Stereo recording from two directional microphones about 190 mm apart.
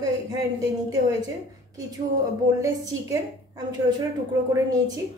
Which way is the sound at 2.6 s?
20° right (ahead or behind).